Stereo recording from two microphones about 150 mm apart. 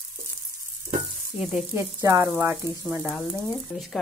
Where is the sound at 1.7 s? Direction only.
20° right (ahead or behind).